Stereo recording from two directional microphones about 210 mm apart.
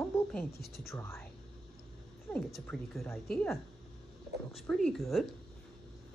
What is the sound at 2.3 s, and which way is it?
Speech, 10° left (ahead or behind).